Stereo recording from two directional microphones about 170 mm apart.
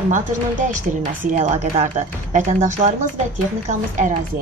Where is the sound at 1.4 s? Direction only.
45° right (ahead or behind).